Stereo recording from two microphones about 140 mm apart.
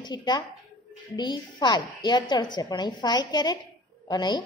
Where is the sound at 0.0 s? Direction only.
30° left (ahead or behind).